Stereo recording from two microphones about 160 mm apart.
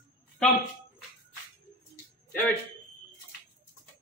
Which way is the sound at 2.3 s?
10° left (ahead or behind).